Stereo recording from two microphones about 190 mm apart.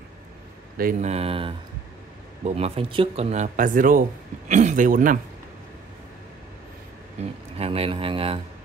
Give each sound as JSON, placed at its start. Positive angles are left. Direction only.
{"t": 0.7, "sound": "speech", "side_deg": -45}
{"t": 7.2, "sound": "speech", "side_deg": -35}